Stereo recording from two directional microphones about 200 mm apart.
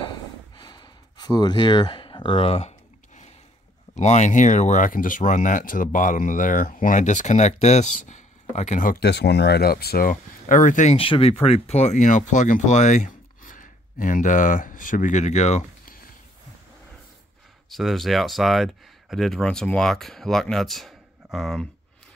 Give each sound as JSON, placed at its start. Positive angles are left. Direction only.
{"t": 0.0, "sound": "a sound", "side_deg": 20}
{"t": 3.9, "sound": "speech", "side_deg": 35}
{"t": 17.6, "sound": "speech", "side_deg": 0}